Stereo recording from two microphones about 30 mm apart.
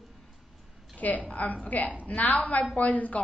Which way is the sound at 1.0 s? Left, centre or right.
Left.